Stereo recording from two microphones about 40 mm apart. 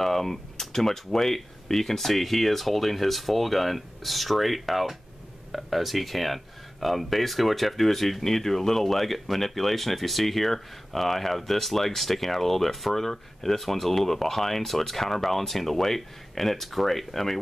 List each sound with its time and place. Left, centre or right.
0.0 s speech: centre